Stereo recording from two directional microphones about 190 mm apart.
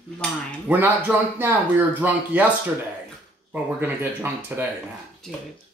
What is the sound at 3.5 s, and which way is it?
Speech, 10° right (ahead or behind).